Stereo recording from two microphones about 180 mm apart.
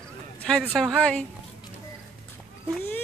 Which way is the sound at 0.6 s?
Centre (ahead or behind).